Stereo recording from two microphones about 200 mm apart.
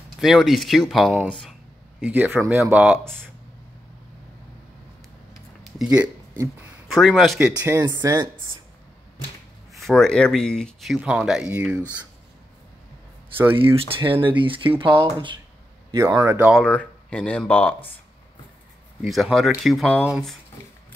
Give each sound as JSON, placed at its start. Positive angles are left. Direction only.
{"t": 0.2, "sound": "speech", "side_deg": 0}
{"t": 5.8, "sound": "speech", "side_deg": -5}
{"t": 7.4, "sound": "speech", "side_deg": -15}
{"t": 9.8, "sound": "speech", "side_deg": 0}
{"t": 13.6, "sound": "speech", "side_deg": -25}
{"t": 16.0, "sound": "speech", "side_deg": -15}
{"t": 16.5, "sound": "speech", "side_deg": 5}
{"t": 19.0, "sound": "speech", "side_deg": 0}